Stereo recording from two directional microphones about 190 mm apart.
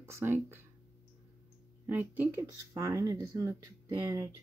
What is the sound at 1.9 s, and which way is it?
Speech, 10° right (ahead or behind).